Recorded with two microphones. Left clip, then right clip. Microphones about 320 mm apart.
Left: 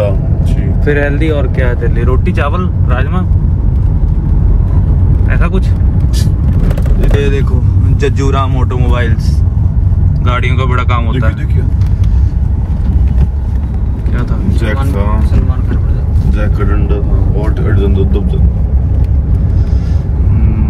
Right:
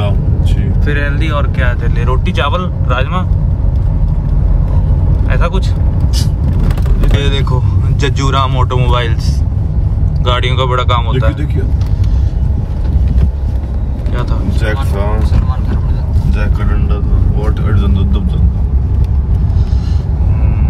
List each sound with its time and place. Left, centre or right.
0.8 s speech: centre
8.0 s speech: centre
10.4 s speech: centre